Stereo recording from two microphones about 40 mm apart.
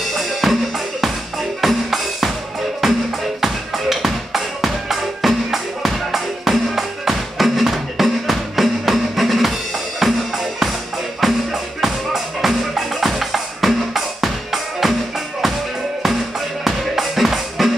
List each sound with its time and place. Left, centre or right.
0.1 s drum kit: centre
1.6 s music: centre